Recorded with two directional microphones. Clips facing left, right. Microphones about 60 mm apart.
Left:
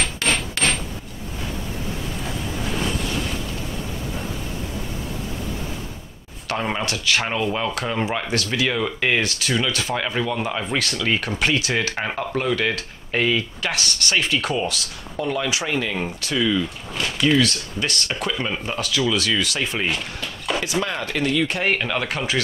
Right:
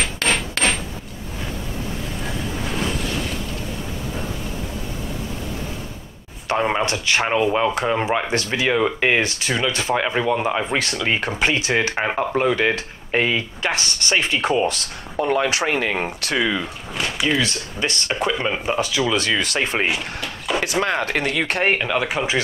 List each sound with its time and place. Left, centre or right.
0.0 s hammer: centre
6.6 s speech: right
14.7 s speech: right
16.6 s a sound: centre
17.4 s speech: centre; by 19.9 s right
19.9 s a sound: centre
21.1 s speech: right
21.6 s speech: centre